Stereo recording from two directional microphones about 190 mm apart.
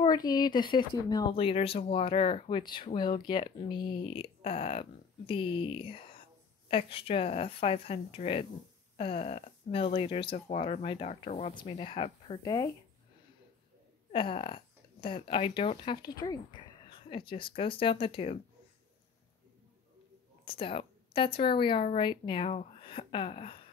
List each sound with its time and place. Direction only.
0.0 s speech: 20° left (ahead or behind)
14.1 s speech: 30° left (ahead or behind)
20.4 s speech: 30° left (ahead or behind)